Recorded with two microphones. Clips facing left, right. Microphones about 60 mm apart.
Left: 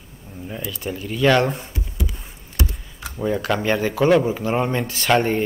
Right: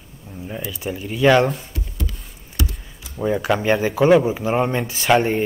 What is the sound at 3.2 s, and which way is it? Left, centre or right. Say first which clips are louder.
Speech: right 2 dB; centre.